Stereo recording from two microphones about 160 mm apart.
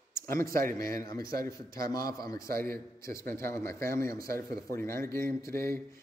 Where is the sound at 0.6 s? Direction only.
65° right (ahead or behind).